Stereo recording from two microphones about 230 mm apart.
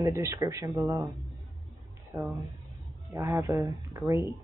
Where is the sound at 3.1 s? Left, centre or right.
Centre.